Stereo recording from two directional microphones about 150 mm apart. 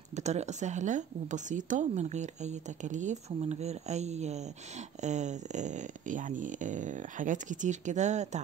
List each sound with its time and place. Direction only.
0.1 s a woman's voice: 50° right (ahead or behind)